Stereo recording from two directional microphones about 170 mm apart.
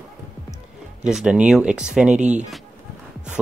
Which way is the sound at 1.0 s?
5° right (ahead or behind).